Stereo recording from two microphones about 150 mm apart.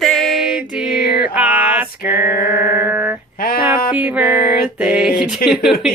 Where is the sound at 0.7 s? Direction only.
10° right (ahead or behind).